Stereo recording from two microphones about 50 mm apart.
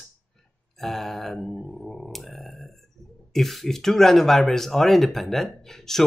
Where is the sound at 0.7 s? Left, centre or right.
Centre.